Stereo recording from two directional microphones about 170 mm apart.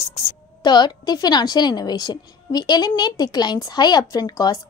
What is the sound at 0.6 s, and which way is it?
A woman's voice, 25° left (ahead or behind).